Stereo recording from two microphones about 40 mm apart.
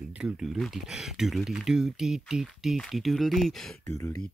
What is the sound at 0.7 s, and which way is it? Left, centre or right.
Speech, centre.